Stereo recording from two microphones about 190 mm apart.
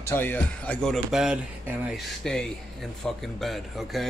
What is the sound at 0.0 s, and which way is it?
A man's voice, 10° left (ahead or behind).